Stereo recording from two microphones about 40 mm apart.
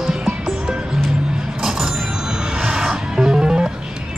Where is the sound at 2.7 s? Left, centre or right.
Centre.